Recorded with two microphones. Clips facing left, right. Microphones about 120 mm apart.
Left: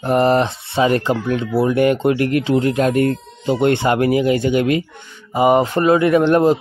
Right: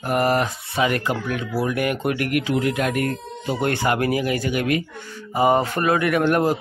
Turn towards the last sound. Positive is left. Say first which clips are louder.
# left 6 dB
turn(degrees=20)  # may be behind; listen again after turning